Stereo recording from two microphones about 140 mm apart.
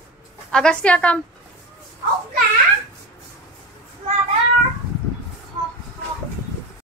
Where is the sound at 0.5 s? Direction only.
5° left (ahead or behind).